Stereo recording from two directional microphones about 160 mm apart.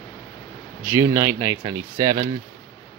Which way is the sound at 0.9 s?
15° right (ahead or behind).